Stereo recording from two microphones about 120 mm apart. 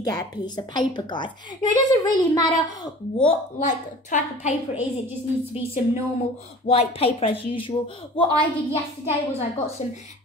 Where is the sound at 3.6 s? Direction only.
90° left.